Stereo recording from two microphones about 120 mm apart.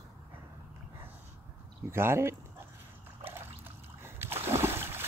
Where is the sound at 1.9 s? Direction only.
20° right (ahead or behind).